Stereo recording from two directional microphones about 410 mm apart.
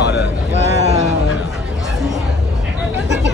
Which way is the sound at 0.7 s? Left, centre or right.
Centre.